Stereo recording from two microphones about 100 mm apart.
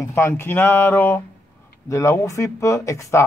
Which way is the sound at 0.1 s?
25° left (ahead or behind).